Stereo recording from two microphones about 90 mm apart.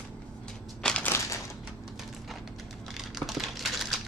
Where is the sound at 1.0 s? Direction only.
30° left (ahead or behind).